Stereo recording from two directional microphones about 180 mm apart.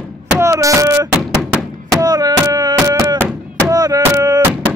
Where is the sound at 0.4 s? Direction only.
15° right (ahead or behind).